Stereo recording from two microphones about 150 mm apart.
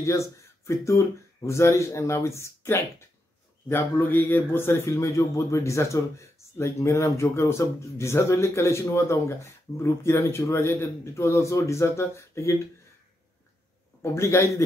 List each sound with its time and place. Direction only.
0.0 s a man's voice: 20° left (ahead or behind)
14.1 s a man's voice: 20° left (ahead or behind)